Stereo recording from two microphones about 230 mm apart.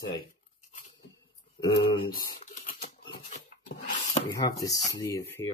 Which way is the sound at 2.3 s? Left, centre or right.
Left.